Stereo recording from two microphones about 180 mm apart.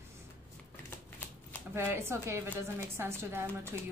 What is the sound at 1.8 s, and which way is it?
A woman's voice, 15° right (ahead or behind).